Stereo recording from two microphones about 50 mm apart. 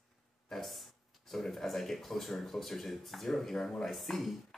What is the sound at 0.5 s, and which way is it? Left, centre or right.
Speech, centre.